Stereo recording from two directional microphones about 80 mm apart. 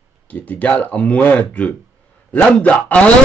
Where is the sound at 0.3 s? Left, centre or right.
Centre.